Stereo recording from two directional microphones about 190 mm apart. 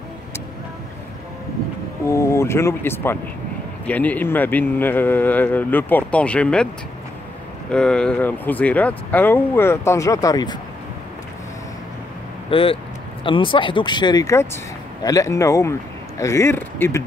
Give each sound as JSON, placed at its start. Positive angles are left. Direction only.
{"t": 2.0, "sound": "speech", "side_deg": 15}
{"t": 7.7, "sound": "speech", "side_deg": 5}
{"t": 12.4, "sound": "speech", "side_deg": 30}